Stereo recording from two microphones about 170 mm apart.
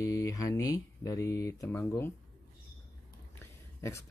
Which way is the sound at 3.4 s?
15° left (ahead or behind).